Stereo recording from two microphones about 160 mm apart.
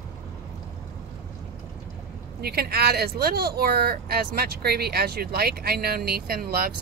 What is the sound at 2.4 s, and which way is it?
Speech, 75° right (ahead or behind).